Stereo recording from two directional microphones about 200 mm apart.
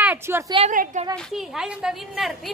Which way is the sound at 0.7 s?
40° right (ahead or behind).